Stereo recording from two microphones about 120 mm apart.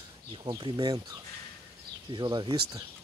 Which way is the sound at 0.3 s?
40° right (ahead or behind).